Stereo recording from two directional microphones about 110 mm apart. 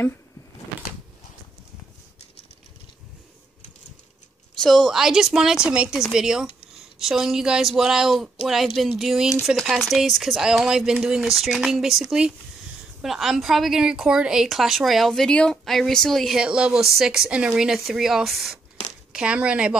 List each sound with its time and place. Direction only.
4.6 s a woman's voice: centre (ahead or behind)